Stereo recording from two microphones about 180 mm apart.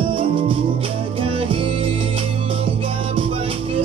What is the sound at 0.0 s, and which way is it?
Music, 30° right (ahead or behind).